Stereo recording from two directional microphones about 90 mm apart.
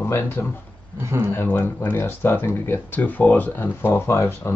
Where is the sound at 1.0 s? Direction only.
30° right (ahead or behind).